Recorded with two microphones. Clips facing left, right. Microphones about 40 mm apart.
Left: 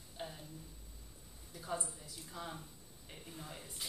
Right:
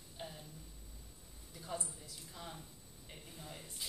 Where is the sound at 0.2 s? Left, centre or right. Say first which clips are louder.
Left 2 dB; centre.